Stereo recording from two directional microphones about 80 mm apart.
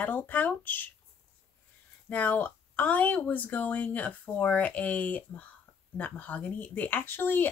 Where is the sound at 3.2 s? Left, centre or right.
Centre.